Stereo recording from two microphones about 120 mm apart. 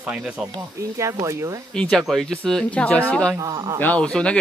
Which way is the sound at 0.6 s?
25° right (ahead or behind).